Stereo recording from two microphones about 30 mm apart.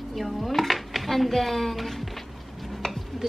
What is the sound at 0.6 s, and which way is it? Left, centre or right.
Speech, centre.